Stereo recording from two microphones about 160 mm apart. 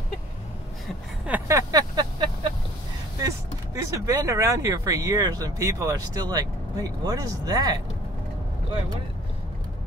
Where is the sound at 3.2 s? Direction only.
20° right (ahead or behind).